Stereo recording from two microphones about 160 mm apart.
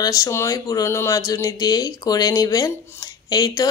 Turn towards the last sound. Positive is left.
turn(degrees=25)  # may be behind; listen again after turning